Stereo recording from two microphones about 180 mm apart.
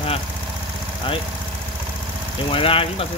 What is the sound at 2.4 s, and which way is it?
Speech, 30° left (ahead or behind).